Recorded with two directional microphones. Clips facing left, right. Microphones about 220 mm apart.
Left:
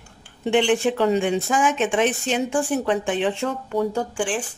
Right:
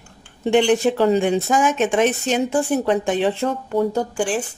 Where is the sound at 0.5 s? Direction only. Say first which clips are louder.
Right 3 dB; 40° right (ahead or behind).